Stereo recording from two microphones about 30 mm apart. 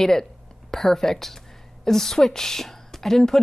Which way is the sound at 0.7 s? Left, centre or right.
Centre.